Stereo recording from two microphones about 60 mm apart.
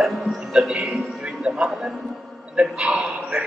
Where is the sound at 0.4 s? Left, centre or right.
Centre.